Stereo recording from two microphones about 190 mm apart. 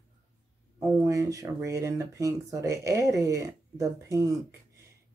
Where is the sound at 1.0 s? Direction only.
15° right (ahead or behind).